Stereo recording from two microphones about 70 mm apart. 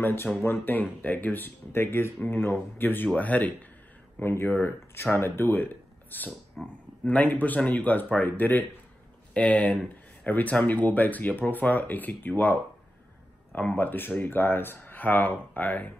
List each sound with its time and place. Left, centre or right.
0.0 s speech: left
4.2 s speech: left
6.6 s speech: centre
7.1 s speech: left